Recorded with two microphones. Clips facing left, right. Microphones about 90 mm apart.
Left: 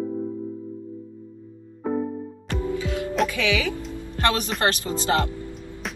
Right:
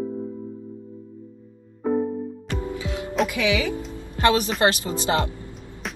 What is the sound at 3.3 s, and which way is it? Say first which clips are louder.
Speech: right 1 dB; 15° right (ahead or behind).